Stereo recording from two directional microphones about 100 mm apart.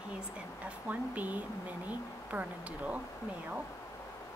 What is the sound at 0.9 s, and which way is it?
Speech, 15° right (ahead or behind).